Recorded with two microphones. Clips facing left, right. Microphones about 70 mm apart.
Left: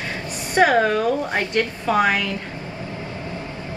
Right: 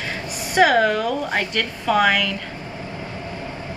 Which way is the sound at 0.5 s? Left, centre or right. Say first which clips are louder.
Even; centre.